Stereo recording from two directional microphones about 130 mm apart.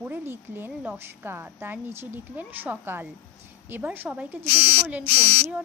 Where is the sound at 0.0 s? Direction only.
15° right (ahead or behind).